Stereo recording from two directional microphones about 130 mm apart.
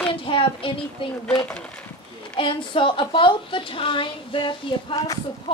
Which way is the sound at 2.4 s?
40° left (ahead or behind).